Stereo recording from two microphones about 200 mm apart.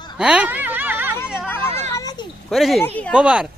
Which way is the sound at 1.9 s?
20° left (ahead or behind).